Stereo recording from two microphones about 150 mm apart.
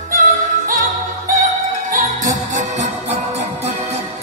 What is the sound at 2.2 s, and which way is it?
Music, 55° right (ahead or behind).